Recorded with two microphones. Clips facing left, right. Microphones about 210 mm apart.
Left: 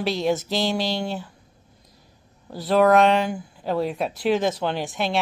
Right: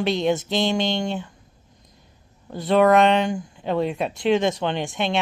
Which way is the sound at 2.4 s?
Centre (ahead or behind).